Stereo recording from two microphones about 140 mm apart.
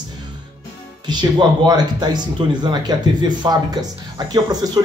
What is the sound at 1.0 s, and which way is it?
Speech, 30° right (ahead or behind).